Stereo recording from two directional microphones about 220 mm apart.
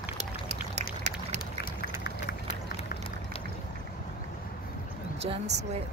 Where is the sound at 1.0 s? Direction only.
30° right (ahead or behind).